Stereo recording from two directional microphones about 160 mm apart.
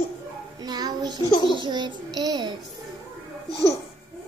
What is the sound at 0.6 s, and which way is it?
Child singing, 25° right (ahead or behind).